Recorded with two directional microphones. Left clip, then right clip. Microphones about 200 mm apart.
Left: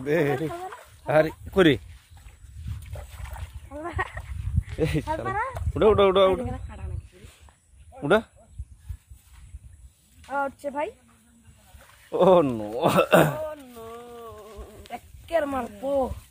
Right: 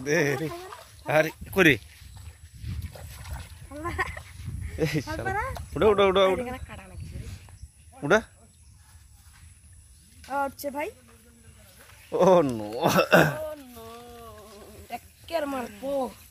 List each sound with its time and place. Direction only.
0.0 s speech: centre (ahead or behind)
2.9 s a sound: 5° left (ahead or behind)
3.8 s sheep: 50° right (ahead or behind)
4.7 s speech: centre (ahead or behind)
6.4 s a sound: 35° right (ahead or behind)
8.0 s speech: centre (ahead or behind)
10.2 s speech: 60° right (ahead or behind)
12.1 s hiccup: 5° right (ahead or behind)